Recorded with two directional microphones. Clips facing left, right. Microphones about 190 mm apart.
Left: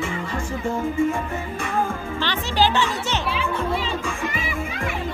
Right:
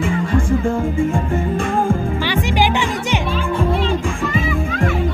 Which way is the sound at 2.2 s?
10° right (ahead or behind).